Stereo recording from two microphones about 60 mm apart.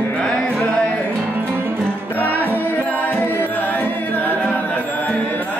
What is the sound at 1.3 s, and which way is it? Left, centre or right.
Music, right.